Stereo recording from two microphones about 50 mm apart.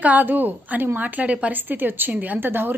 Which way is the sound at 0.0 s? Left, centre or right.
Right.